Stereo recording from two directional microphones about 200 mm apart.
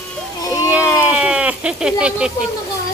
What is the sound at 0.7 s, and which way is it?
Speech, 5° right (ahead or behind).